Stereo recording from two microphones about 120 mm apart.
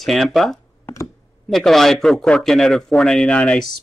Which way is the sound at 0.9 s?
25° left (ahead or behind).